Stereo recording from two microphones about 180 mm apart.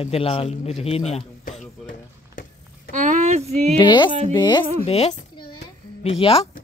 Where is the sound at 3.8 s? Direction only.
25° left (ahead or behind).